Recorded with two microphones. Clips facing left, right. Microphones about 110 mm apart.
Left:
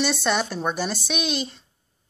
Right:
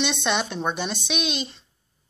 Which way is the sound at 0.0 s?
5° left (ahead or behind).